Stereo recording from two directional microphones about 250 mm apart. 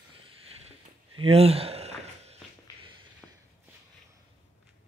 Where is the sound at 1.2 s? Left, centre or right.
Right.